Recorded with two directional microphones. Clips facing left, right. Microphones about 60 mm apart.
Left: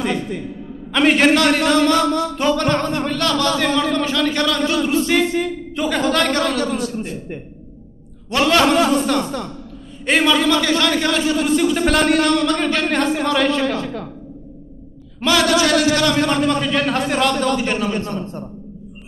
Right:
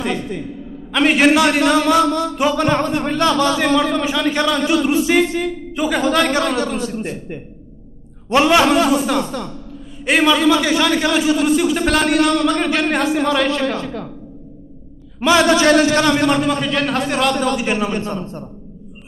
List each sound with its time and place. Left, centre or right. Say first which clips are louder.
0.9 s a man's voice: right 1 dB; centre
8.3 s a man's voice: right 2 dB; centre
15.1 s a man's voice: right 3 dB; centre
16.3 s a man's voice: right 1 dB; centre